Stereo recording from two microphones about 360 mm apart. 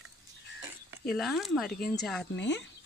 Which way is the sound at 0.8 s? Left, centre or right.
Centre.